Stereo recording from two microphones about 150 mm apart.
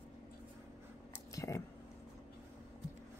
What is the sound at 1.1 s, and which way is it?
Whispering, 20° left (ahead or behind).